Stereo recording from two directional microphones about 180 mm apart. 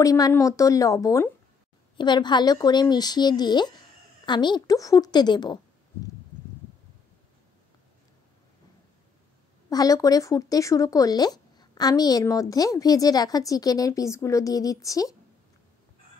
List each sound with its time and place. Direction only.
0.0 s a woman's voice: 20° left (ahead or behind)
9.7 s speech: 20° left (ahead or behind)